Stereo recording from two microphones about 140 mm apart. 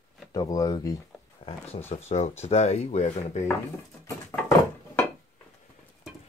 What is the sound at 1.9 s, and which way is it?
Speech, 55° left (ahead or behind).